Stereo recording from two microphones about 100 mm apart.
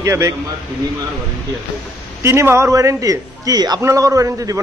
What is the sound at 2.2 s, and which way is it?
Speech, 30° right (ahead or behind).